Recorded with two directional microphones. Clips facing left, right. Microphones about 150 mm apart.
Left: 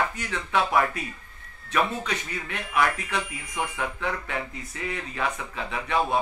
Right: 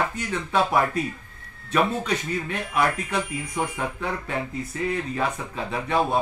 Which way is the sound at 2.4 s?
30° right (ahead or behind).